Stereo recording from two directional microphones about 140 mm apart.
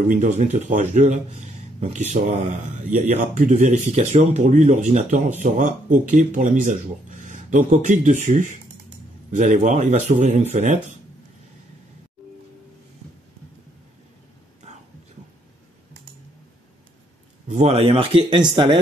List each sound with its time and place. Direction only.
0.1 s speech: 60° right (ahead or behind)
4.5 s speech: 65° right (ahead or behind)
17.5 s speech: 50° right (ahead or behind); by 18.8 s 35° right (ahead or behind)